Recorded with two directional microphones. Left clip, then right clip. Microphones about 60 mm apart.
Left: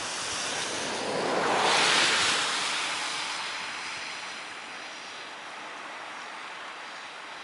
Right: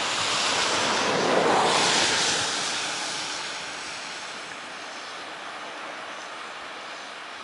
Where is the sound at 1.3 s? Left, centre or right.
Left.